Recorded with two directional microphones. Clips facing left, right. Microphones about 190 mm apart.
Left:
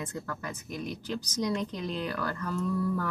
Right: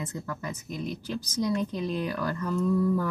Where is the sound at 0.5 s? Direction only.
15° left (ahead or behind).